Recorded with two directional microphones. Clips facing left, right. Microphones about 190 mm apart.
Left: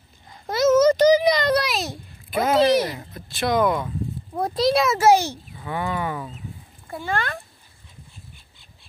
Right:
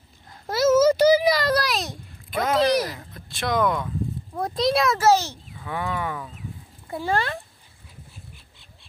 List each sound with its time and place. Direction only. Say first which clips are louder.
0.3 s a sound: left 1 dB; 5° right (ahead or behind)
3.0 s speech: left 4 dB; 5° left (ahead or behind)
4.9 s a child's voice: left 2 dB; 15° left (ahead or behind)
7.0 s speech: right 2 dB; 35° right (ahead or behind)